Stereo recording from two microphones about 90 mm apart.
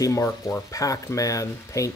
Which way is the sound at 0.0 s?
35° left (ahead or behind).